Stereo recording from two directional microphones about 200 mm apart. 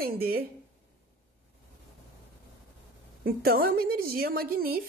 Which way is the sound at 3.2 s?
50° right (ahead or behind).